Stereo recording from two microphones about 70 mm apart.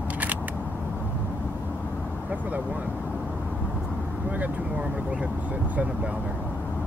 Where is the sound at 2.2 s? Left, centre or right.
Right.